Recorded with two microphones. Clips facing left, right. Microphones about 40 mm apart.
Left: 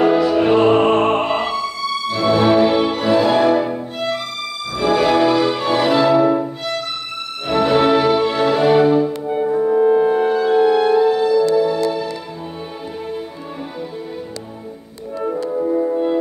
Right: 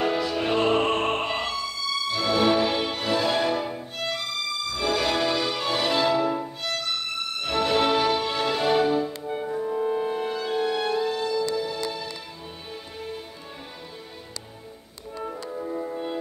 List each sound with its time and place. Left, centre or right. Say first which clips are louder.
0.0 s music: left 11 dB; centre
7.4 s music: left 8 dB; centre
9.5 s music: left 12 dB; left
9.8 s music: left 13 dB; left
15.3 s music: left 14 dB; left